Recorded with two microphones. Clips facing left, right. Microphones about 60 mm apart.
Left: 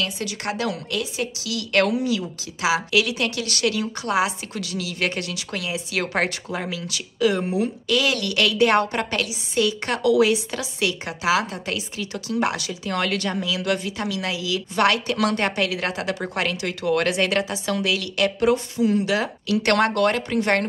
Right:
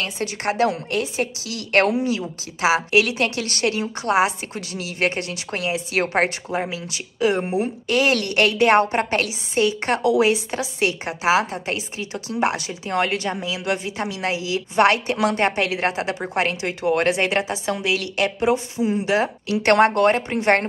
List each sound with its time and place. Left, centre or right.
0.0 s a woman's voice: right